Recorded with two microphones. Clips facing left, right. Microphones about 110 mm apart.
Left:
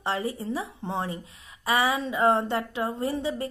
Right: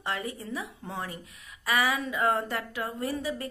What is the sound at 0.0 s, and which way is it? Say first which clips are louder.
A woman's voice: left 5 dB; 30° left (ahead or behind).